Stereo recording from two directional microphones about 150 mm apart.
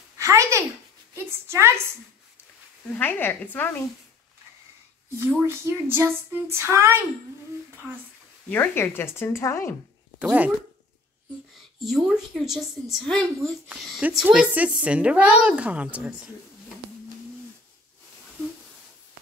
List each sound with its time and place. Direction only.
0.2 s speech: 20° right (ahead or behind)
2.9 s speech: 15° left (ahead or behind)
5.2 s speech: 15° right (ahead or behind)
8.5 s speech: 15° left (ahead or behind)
11.8 s a woman's voice: centre (ahead or behind)